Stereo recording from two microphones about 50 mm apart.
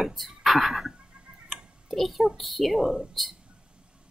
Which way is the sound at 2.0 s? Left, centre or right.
Centre.